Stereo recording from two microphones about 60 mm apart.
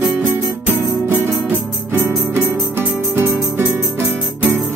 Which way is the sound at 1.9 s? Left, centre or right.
Right.